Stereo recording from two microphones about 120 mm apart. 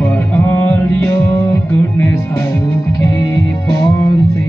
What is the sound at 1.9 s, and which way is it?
Music, 25° left (ahead or behind).